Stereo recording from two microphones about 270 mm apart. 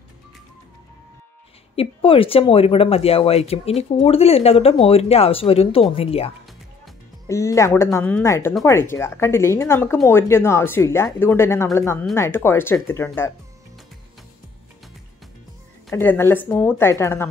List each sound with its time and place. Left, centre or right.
1.8 s speech: centre
7.2 s speech: centre
15.9 s speech: centre